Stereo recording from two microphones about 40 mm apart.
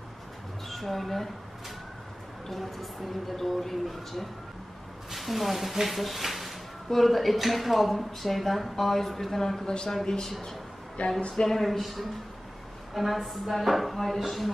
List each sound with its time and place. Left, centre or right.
0.7 s speech: centre
2.4 s speech: centre; by 11.4 s left
11.4 s speech: centre